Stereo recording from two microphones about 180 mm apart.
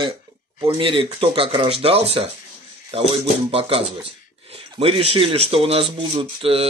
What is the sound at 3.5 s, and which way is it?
Speech, 30° right (ahead or behind).